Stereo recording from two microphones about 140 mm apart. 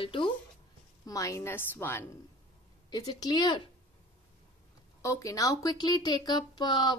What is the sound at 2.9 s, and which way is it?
Speech, 30° left (ahead or behind).